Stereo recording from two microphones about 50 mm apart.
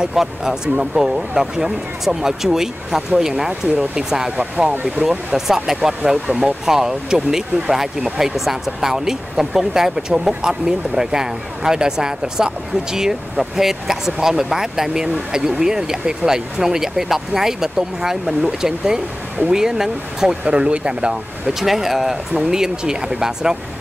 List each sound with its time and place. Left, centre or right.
0.1 s speech: centre